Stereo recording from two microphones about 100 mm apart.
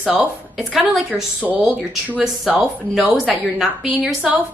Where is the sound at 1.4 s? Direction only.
15° right (ahead or behind).